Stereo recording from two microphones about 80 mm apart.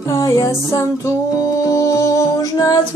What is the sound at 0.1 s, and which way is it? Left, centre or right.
Music, left.